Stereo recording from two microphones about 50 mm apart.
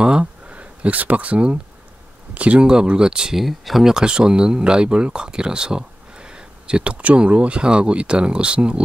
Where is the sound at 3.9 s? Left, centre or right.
Centre.